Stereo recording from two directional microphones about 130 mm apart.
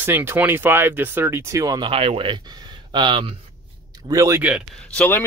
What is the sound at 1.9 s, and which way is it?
Speech, 45° right (ahead or behind).